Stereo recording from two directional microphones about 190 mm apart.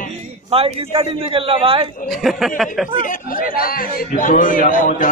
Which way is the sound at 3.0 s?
45° left (ahead or behind).